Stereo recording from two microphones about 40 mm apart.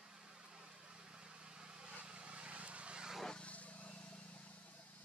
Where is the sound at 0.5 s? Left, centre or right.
Centre.